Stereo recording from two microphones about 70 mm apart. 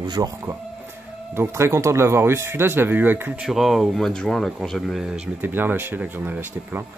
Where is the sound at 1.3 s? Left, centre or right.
Right.